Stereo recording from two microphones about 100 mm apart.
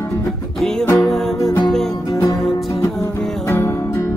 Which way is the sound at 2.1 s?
30° left (ahead or behind).